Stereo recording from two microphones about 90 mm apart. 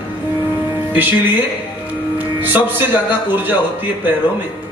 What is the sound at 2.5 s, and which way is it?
Speech, 25° right (ahead or behind).